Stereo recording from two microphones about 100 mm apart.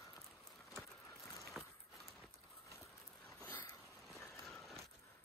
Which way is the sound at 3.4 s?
20° left (ahead or behind).